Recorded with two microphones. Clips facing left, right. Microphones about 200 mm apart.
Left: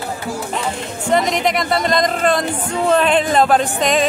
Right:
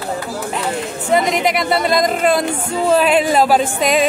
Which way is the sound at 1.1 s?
5° right (ahead or behind).